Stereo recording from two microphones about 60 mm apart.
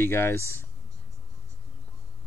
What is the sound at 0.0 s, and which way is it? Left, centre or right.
Speech, left.